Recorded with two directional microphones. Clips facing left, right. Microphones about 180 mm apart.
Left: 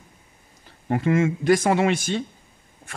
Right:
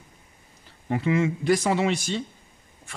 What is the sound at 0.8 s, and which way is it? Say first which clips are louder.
Speech: left 3 dB; 50° left (ahead or behind).